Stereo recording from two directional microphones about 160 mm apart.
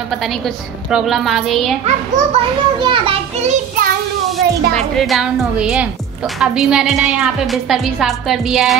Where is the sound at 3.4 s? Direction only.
45° right (ahead or behind).